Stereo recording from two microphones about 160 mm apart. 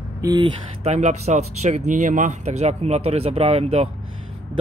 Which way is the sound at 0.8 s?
45° right (ahead or behind).